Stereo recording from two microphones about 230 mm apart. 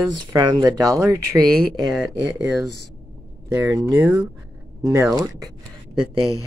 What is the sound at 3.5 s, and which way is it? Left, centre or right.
Speech, centre.